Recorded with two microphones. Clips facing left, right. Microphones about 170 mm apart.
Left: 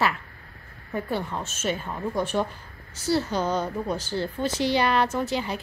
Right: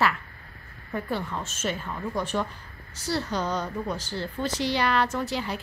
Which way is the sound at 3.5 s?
25° left (ahead or behind).